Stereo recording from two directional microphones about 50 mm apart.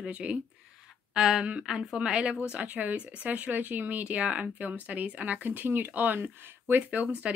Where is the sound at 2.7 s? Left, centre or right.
Right.